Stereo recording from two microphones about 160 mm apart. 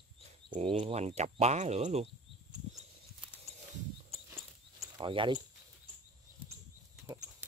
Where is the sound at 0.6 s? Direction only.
35° right (ahead or behind).